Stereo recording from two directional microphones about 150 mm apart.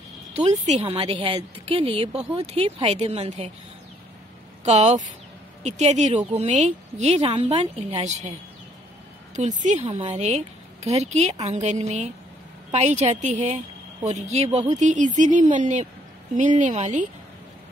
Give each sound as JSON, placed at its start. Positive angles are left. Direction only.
{"t": 0.4, "sound": "a woman's voice", "side_deg": -45}
{"t": 4.6, "sound": "a woman's voice", "side_deg": -50}
{"t": 7.2, "sound": "a woman's voice", "side_deg": -40}
{"t": 9.3, "sound": "a woman's voice", "side_deg": -55}